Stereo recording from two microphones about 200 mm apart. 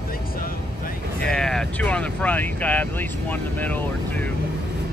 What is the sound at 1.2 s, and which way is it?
Vehicle, 5° left (ahead or behind).